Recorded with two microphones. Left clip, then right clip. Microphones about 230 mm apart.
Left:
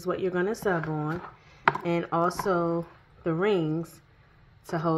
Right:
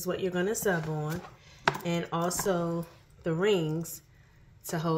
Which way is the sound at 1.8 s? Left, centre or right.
Left.